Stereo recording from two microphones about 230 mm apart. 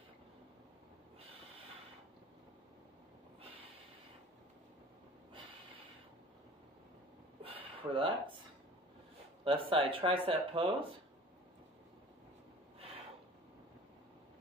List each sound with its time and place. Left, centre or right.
7.9 s speech: right
9.4 s speech: right